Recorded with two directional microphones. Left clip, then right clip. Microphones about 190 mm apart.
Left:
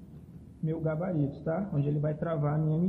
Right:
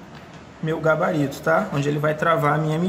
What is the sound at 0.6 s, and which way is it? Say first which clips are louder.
Speech: right 13 dB; 15° right (ahead or behind).